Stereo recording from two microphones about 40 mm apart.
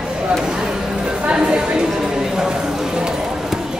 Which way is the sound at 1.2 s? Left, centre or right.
Right.